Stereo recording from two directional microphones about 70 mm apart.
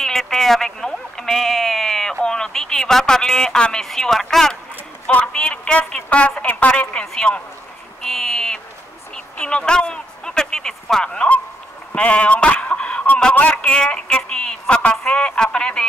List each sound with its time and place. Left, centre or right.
0.0 s sheep: centre
2.2 s speech: centre